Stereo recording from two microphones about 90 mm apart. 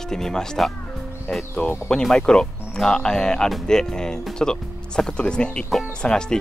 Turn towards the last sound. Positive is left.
turn(degrees=10)  # may be behind; listen again after turning